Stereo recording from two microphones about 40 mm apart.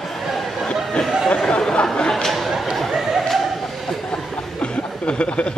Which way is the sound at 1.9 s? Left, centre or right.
Centre.